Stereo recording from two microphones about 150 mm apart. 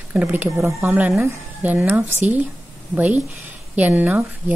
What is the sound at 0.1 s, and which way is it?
A woman's voice, 10° right (ahead or behind).